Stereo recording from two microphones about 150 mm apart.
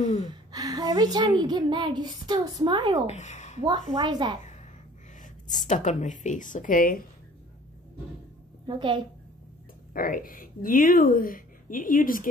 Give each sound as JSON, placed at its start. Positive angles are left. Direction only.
{"t": 0.0, "sound": "a sound", "side_deg": 50}
{"t": 0.3, "sound": "a child's voice", "side_deg": -25}
{"t": 3.1, "sound": "speech", "side_deg": 50}
{"t": 3.9, "sound": "a child's voice", "side_deg": -30}
{"t": 5.2, "sound": "speech", "side_deg": 55}
{"t": 8.6, "sound": "a woman's voice", "side_deg": -30}
{"t": 9.9, "sound": "a woman's voice", "side_deg": 70}